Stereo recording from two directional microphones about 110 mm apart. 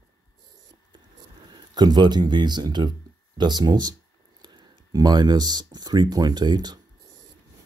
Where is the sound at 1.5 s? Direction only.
40° right (ahead or behind).